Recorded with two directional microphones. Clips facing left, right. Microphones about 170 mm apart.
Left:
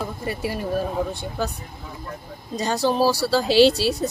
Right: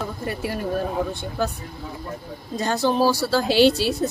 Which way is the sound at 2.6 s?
10° left (ahead or behind).